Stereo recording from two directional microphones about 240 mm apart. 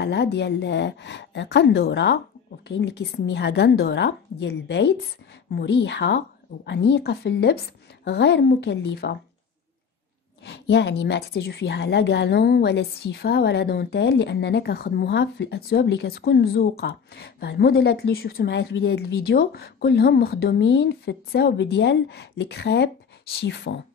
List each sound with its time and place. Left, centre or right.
0.0 s a woman's voice: left
10.4 s a woman's voice: left